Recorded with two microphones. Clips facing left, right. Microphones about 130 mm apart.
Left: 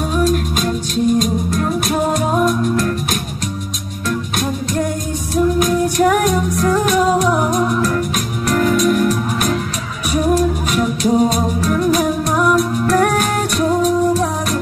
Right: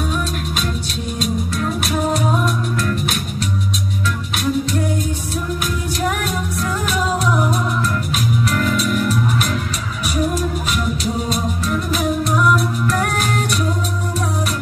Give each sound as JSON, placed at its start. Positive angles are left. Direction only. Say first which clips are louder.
{"t": 1.2, "sound": "music", "louder": "left 3 dB", "side_deg": 45}
{"t": 5.6, "sound": "music", "louder": "left 8 dB", "side_deg": 45}
{"t": 8.5, "sound": "music", "louder": "left 10 dB", "side_deg": 40}
{"t": 10.8, "sound": "music", "louder": "left 11 dB", "side_deg": 45}